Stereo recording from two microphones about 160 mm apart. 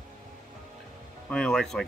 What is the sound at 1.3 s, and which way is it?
Speech, 5° left (ahead or behind).